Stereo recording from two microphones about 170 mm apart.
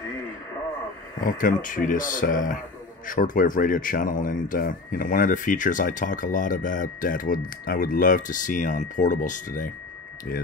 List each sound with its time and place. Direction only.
1.2 s speech: 50° left (ahead or behind)